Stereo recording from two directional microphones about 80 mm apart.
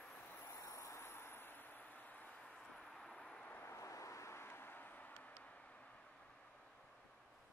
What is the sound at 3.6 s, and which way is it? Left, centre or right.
Vehicle, left.